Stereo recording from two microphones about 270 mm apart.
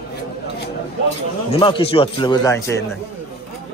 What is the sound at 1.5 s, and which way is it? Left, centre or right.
Speech, centre.